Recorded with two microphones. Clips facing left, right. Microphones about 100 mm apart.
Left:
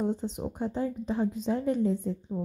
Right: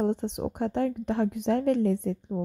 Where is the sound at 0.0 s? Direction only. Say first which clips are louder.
Right 3 dB; 70° right (ahead or behind).